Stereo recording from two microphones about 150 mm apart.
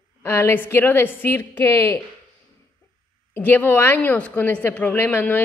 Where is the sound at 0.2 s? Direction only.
15° left (ahead or behind).